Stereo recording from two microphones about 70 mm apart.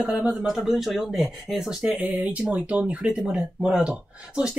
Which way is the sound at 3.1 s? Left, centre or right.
Centre.